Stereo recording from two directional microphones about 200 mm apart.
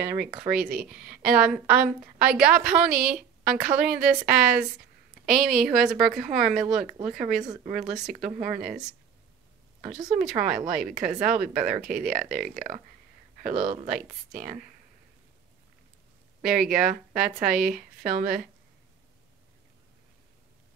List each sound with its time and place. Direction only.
0.3 s speech: 5° right (ahead or behind)
7.6 s speech: 35° right (ahead or behind)
7.9 s speech: 5° right (ahead or behind)
8.3 s speech: 35° right (ahead or behind)
9.9 s speech: centre (ahead or behind)
12.5 s speech: 40° right (ahead or behind)
16.4 s speech: centre (ahead or behind)
17.4 s speech: 45° right (ahead or behind)